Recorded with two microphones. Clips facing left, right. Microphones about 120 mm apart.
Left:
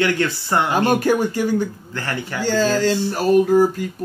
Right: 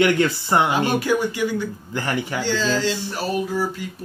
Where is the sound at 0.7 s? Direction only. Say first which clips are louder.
Left 3 dB; 45° left (ahead or behind).